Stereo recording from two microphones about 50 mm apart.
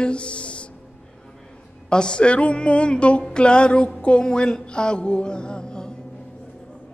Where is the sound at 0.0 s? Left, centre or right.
Left.